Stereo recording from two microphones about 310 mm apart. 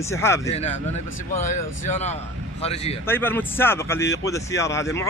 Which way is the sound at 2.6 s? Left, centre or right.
Centre.